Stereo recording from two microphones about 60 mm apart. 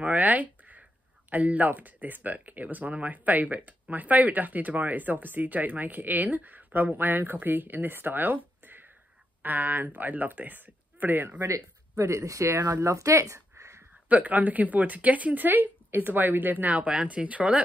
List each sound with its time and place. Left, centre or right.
0.0 s a sound: right
1.3 s speech: right
12.0 s speech: right
14.0 s speech: right